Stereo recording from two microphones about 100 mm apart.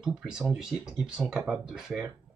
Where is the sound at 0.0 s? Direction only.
5° right (ahead or behind).